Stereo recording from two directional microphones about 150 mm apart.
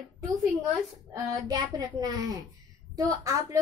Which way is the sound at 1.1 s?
25° right (ahead or behind).